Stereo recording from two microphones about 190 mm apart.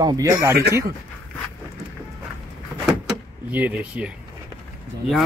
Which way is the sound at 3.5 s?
10° right (ahead or behind).